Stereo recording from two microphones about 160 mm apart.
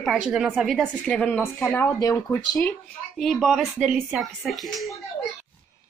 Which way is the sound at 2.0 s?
20° left (ahead or behind).